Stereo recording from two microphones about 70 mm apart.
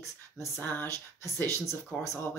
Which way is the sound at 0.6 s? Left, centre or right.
Left.